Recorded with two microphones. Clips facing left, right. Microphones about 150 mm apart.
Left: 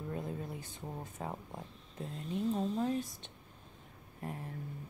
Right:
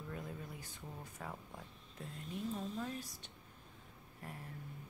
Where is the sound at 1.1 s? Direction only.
30° left (ahead or behind).